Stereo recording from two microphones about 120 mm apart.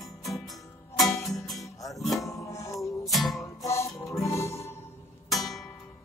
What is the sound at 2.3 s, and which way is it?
Music, 25° left (ahead or behind).